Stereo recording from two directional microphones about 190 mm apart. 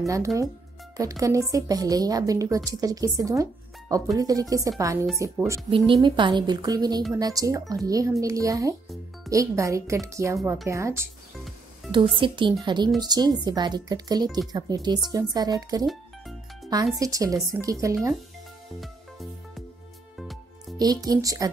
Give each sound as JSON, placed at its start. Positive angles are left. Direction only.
{"t": 0.0, "sound": "a woman's voice", "side_deg": -15}
{"t": 12.2, "sound": "speech", "side_deg": -25}
{"t": 15.8, "sound": "music", "side_deg": 0}
{"t": 16.7, "sound": "a woman's voice", "side_deg": -20}
{"t": 18.8, "sound": "music", "side_deg": 0}
{"t": 20.7, "sound": "speech", "side_deg": -20}